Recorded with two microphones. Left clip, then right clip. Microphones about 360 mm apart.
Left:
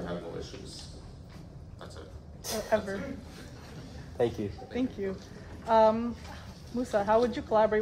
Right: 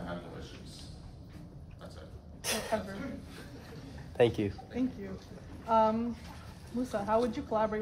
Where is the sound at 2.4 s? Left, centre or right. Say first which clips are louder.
Even; right.